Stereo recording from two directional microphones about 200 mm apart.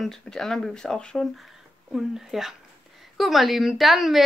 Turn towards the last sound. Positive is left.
turn(degrees=0)  # may be behind; listen again after turning